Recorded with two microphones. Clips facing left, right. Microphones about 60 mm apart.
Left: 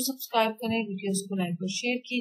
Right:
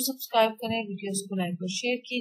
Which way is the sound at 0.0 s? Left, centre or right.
Centre.